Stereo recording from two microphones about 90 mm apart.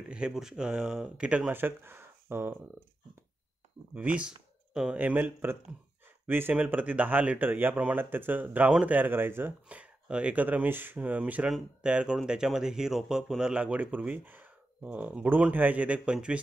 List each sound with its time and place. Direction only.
0.1 s speech: 5° right (ahead or behind)
1.5 s speech: 25° right (ahead or behind)
3.9 s speech: 15° right (ahead or behind)